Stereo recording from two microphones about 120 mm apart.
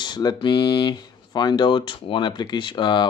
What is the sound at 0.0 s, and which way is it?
Speech, 35° left (ahead or behind).